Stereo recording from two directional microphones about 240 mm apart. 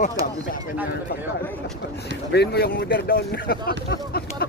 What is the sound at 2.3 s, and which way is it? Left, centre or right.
Speech, left.